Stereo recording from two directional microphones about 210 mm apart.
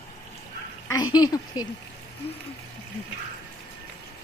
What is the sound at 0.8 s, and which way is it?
Speech, 15° left (ahead or behind).